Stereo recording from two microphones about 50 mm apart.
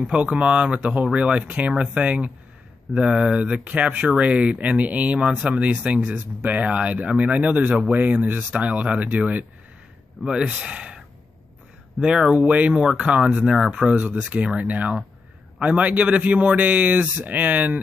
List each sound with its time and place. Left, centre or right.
0.1 s speech: right
3.6 s speech: right
7.5 s speech: right
10.2 s speech: centre
12.0 s speech: centre
12.4 s speech: right